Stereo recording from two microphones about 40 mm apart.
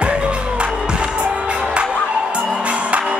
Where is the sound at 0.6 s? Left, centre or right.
Right.